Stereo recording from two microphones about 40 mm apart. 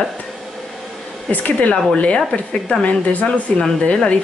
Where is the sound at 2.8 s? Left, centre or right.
Left.